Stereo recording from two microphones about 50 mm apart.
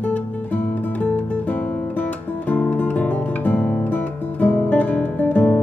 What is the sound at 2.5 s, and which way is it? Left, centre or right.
Music, left.